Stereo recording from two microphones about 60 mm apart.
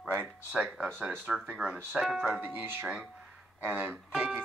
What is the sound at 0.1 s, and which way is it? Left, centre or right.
Speech, right.